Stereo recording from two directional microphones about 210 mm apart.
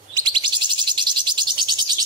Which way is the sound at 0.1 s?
20° right (ahead or behind).